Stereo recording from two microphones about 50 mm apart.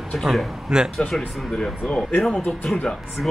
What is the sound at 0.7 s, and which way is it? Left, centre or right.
Speech, centre.